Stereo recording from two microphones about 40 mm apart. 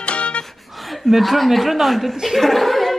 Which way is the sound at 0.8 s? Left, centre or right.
Centre.